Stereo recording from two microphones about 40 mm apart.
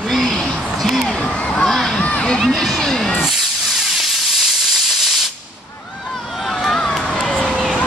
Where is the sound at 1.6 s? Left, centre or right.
Centre.